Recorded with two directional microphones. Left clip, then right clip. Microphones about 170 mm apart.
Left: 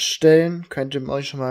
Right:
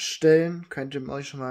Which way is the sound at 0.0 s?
35° left (ahead or behind).